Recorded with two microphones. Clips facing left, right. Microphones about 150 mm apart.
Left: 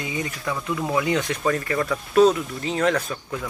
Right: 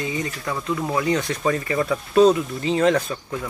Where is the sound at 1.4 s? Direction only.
10° right (ahead or behind).